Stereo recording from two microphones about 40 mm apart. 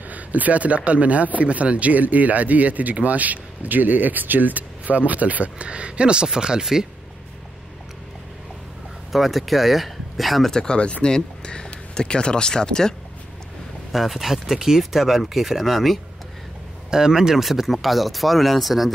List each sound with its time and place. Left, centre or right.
0.1 s speech: right; by 6.9 s centre
9.1 s speech: centre
10.5 s speech: centre
10.8 s speech: left
13.9 s speech: centre
16.9 s speech: centre
17.5 s speech: centre